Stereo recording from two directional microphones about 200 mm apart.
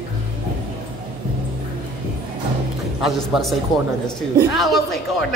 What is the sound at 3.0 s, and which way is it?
Speech, centre (ahead or behind).